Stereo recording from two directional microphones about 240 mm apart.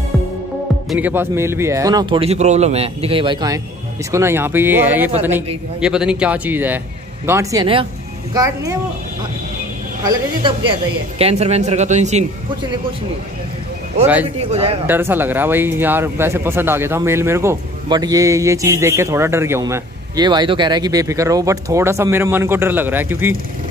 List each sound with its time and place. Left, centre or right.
0.8 s a man's voice: centre
10.0 s speech: right
14.4 s speech: right
14.9 s speech: centre